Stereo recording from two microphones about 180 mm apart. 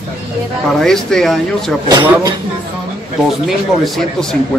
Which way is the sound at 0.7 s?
5° left (ahead or behind).